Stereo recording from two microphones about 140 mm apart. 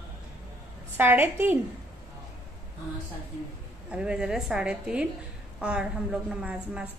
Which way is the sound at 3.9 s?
5° right (ahead or behind).